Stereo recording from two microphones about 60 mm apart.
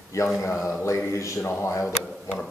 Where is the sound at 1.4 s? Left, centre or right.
Left.